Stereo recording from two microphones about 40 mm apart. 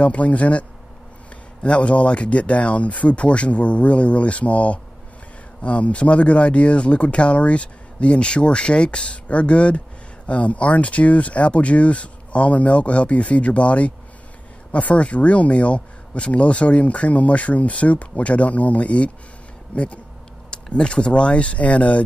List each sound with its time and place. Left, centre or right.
0.0 s speech: left